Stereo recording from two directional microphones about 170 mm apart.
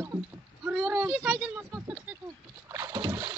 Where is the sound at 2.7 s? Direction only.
20° right (ahead or behind).